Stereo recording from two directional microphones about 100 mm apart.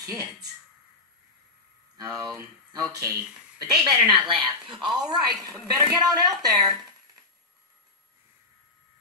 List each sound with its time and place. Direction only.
0.0 s speech: 35° right (ahead or behind)
2.0 s a woman's voice: 40° right (ahead or behind)